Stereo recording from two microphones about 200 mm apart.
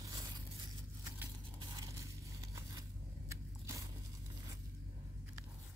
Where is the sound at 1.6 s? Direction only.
20° right (ahead or behind).